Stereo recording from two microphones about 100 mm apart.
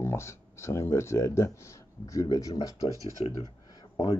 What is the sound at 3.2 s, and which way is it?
Speech, 80° left.